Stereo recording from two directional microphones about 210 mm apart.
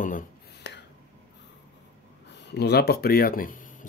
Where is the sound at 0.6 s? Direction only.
55° left (ahead or behind).